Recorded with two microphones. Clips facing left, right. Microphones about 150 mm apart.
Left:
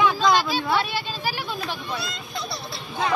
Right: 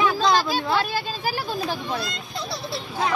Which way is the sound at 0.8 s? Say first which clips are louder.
Right 1 dB; 45° right (ahead or behind).